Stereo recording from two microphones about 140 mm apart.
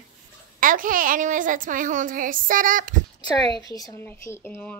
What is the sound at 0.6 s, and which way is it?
A child's voice, 75° right (ahead or behind).